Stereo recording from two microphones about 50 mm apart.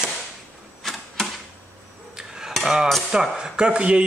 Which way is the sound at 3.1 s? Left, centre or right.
Centre.